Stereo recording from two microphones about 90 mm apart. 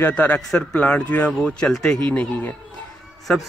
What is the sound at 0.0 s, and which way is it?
Speech, 20° left (ahead or behind).